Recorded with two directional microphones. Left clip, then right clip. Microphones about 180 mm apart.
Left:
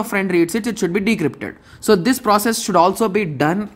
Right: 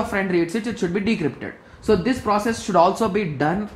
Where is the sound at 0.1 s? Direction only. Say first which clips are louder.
Left 4 dB; 40° left (ahead or behind).